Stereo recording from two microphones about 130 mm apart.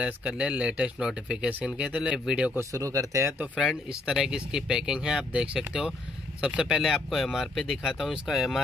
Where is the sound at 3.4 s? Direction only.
5° right (ahead or behind).